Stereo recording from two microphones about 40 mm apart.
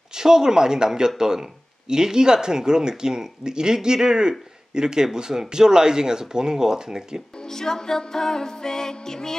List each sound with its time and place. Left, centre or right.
0.1 s speech: centre
7.4 s music: centre